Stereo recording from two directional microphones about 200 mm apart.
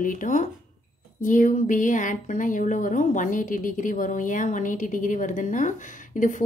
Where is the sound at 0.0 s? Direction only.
40° left (ahead or behind).